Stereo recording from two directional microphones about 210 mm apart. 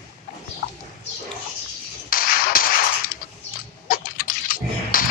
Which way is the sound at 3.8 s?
40° left (ahead or behind).